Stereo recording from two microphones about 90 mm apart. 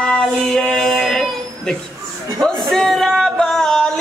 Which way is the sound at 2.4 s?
5° left (ahead or behind).